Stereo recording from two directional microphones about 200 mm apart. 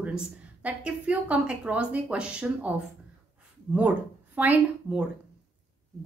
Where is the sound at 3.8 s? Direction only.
10° right (ahead or behind).